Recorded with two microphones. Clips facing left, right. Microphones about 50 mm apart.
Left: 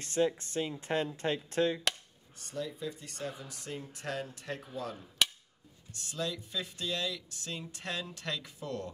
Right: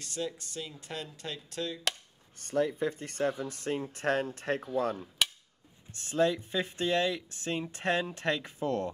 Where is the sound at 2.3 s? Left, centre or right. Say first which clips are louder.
Right 10 dB; right.